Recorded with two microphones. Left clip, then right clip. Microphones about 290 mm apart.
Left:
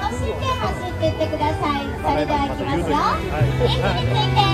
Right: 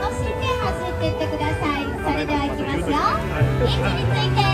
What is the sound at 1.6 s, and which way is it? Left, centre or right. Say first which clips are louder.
Children playing: left 2 dB; left.